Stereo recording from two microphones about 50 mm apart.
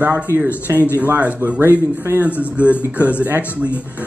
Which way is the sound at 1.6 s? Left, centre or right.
Right.